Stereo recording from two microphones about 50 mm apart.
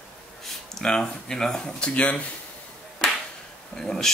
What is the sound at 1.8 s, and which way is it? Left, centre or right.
Speech, left.